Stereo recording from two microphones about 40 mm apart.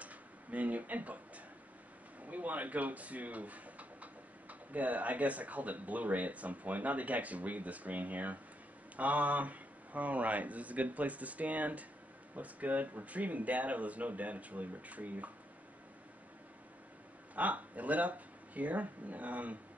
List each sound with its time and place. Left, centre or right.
0.0 s a sound: right
2.2 s speech: right
17.4 s speech: right